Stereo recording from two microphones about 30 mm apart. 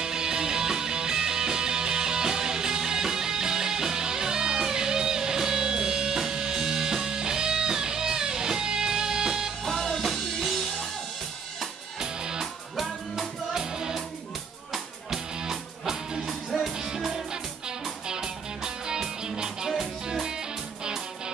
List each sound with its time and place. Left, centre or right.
0.0 s music: right
9.7 s music: centre
12.0 s music: right
12.7 s music: centre
13.5 s music: right
15.5 s music: centre
18.0 s music: right